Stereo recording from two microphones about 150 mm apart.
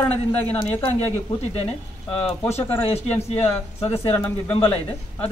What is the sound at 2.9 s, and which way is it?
Speech, 45° left (ahead or behind).